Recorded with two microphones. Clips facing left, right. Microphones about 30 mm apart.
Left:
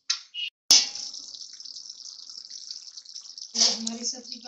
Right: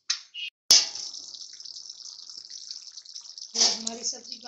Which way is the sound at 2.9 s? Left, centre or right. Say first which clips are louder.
Left 1 dB; left.